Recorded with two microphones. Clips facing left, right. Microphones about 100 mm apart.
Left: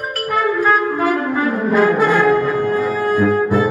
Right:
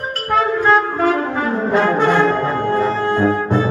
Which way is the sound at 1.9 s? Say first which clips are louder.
Even; 25° right (ahead or behind).